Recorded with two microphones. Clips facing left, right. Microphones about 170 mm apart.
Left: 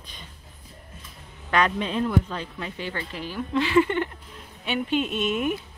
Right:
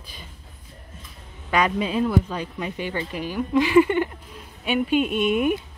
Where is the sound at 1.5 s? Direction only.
10° right (ahead or behind).